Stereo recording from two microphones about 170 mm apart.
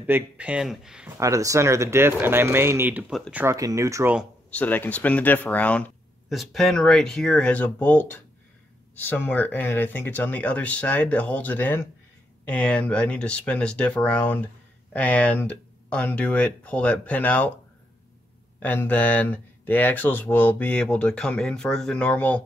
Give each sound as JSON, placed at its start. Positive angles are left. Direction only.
{"t": 0.0, "sound": "speech", "side_deg": -10}
{"t": 1.2, "sound": "speech", "side_deg": -20}
{"t": 3.5, "sound": "speech", "side_deg": -20}
{"t": 4.5, "sound": "speech", "side_deg": 10}
{"t": 18.6, "sound": "speech", "side_deg": 10}